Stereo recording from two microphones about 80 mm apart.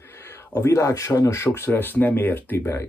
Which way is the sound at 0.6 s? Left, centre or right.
Left.